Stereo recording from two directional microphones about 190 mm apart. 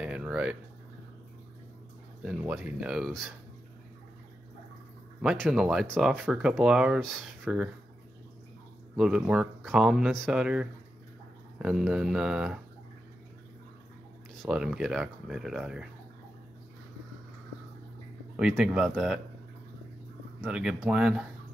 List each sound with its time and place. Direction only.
0.0 s a sound: 5° right (ahead or behind)
2.2 s speech: 5° right (ahead or behind)
5.2 s speech: centre (ahead or behind)
8.9 s speech: 5° right (ahead or behind)
14.4 s speech: 5° right (ahead or behind)
18.3 s speech: 5° right (ahead or behind)
20.4 s speech: 5° right (ahead or behind)